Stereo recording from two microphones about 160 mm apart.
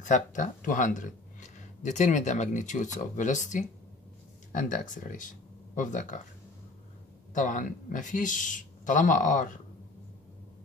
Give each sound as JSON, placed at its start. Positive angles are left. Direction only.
{"t": 0.0, "sound": "speech", "side_deg": 50}
{"t": 7.3, "sound": "speech", "side_deg": 55}